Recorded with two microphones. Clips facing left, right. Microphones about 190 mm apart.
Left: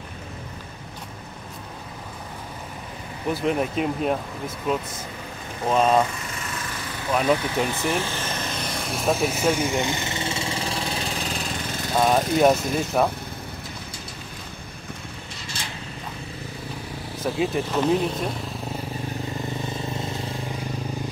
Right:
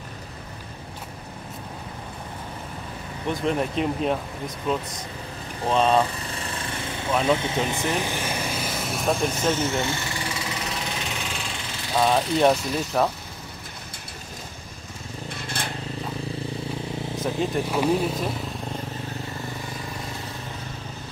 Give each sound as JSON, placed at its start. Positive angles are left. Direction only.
{"t": 3.3, "sound": "speech", "side_deg": 5}
{"t": 6.0, "sound": "a sound", "side_deg": -35}
{"t": 7.3, "sound": "vehicle", "side_deg": -20}
{"t": 12.0, "sound": "speech", "side_deg": 5}
{"t": 15.4, "sound": "vehicle", "side_deg": -55}
{"t": 17.6, "sound": "speech", "side_deg": -10}
{"t": 19.8, "sound": "vehicle", "side_deg": 25}